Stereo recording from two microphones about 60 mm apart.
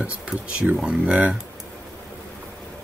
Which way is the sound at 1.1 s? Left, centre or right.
Right.